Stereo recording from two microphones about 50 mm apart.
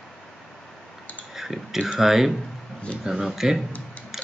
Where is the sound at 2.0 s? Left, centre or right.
Centre.